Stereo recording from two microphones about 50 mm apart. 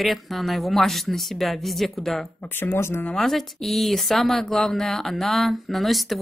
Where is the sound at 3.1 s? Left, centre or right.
Centre.